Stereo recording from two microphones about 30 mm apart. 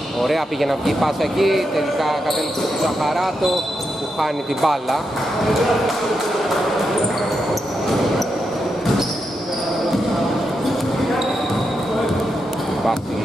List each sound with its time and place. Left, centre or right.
0.2 s speech: centre